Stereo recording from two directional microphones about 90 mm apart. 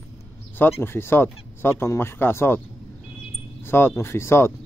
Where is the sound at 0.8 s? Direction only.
25° left (ahead or behind).